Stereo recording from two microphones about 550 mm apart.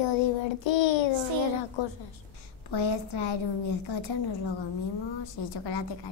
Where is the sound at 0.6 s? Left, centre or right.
Left.